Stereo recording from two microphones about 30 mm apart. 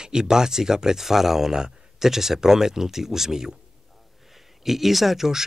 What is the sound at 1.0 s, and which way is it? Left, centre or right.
Speech, centre.